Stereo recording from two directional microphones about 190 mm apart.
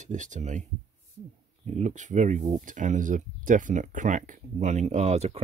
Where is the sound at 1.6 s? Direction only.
40° right (ahead or behind).